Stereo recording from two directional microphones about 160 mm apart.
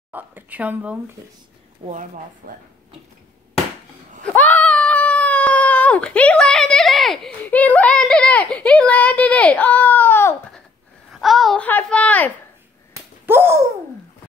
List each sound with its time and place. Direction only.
0.1 s speech: 10° right (ahead or behind)
1.9 s speech: 55° right (ahead or behind)
4.2 s speech: 10° left (ahead or behind)
11.1 s speech: centre (ahead or behind)
12.9 s slap: 15° right (ahead or behind)